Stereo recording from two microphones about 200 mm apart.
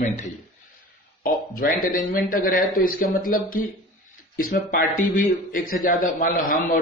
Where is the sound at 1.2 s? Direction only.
45° left (ahead or behind).